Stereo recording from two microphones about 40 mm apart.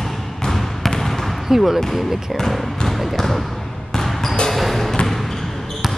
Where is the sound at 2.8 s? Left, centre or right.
Centre.